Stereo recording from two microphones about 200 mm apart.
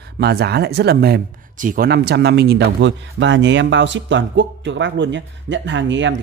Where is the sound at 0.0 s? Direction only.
55° right (ahead or behind).